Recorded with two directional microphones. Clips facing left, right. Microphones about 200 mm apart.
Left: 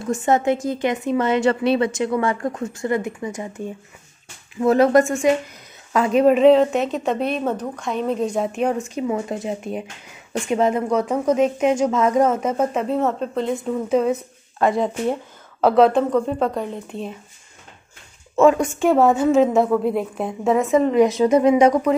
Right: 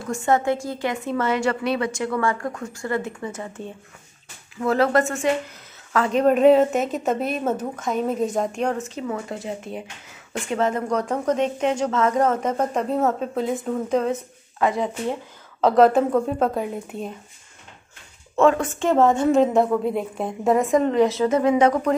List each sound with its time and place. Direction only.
0.0 s a woman's voice: 20° left (ahead or behind)
6.3 s a woman's voice: centre (ahead or behind)
15.6 s a woman's voice: centre (ahead or behind)
18.3 s a woman's voice: 10° left (ahead or behind)
21.0 s a woman's voice: 15° left (ahead or behind)